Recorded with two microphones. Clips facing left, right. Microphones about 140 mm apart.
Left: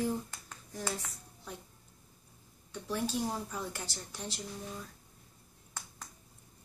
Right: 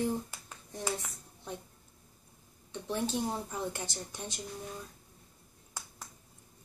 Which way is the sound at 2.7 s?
20° right (ahead or behind).